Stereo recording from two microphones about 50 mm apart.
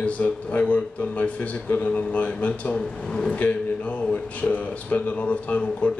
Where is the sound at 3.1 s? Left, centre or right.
Centre.